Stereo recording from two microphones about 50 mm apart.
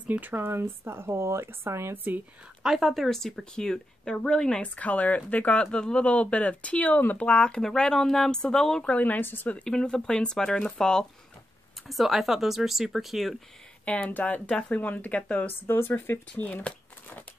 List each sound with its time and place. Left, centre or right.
0.1 s speech: right
0.4 s speech: right
2.6 s speech: centre
4.6 s speech: left
7.0 s speech: left
7.2 s speech: left
8.9 s speech: left
9.2 s speech: left
9.7 s speech: centre
11.9 s speech: centre
13.8 s speech: left
15.6 s speech: left